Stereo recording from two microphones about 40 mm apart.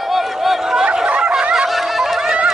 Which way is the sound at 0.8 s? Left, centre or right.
Right.